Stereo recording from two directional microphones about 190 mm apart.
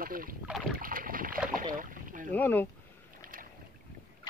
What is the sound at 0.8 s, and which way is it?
Boat, 45° right (ahead or behind).